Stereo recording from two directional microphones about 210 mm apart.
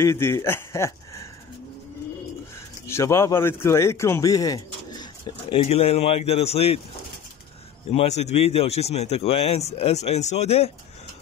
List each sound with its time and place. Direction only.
0.0 s speech: 10° left (ahead or behind)
2.9 s speech: 15° left (ahead or behind); by 6.8 s 30° left (ahead or behind)
7.9 s a man's voice: 30° left (ahead or behind)